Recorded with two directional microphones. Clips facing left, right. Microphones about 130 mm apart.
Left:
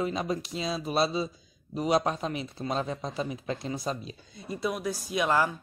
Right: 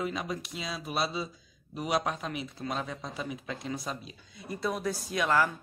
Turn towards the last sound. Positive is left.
turn(degrees=20)  # may be behind; listen again after turning